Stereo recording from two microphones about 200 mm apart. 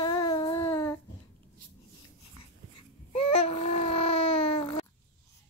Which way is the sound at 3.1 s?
30° left (ahead or behind).